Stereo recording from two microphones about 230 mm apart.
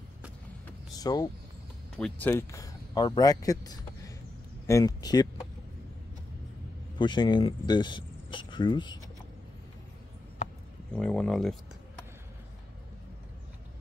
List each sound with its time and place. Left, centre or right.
0.7 s vehicle: centre
2.0 s speech: centre
7.0 s speech: centre
10.9 s speech: centre